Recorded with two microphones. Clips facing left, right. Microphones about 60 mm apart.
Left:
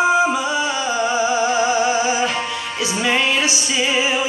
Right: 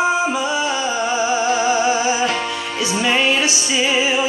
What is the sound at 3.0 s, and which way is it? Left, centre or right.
Music, left.